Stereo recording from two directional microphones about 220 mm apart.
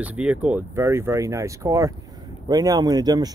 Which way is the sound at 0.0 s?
5° right (ahead or behind).